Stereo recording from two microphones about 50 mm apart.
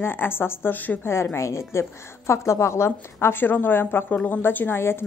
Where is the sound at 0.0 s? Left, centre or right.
Left.